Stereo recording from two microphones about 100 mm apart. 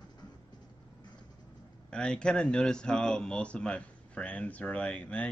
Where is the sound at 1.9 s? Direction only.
10° left (ahead or behind).